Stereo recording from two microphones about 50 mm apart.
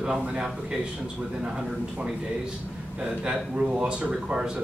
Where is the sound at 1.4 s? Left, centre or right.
Centre.